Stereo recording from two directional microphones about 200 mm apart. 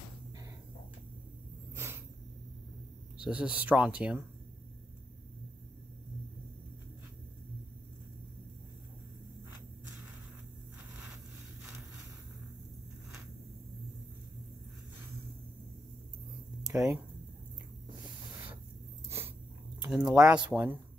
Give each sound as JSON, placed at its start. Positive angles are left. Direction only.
{"t": 3.2, "sound": "speech", "side_deg": -5}
{"t": 16.6, "sound": "speech", "side_deg": -15}
{"t": 19.0, "sound": "a sound", "side_deg": -15}
{"t": 19.9, "sound": "speech", "side_deg": -5}